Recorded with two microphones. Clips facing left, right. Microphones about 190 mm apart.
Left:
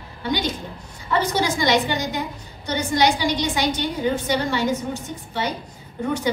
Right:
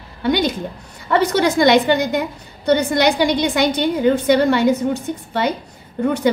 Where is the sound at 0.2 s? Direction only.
60° right (ahead or behind).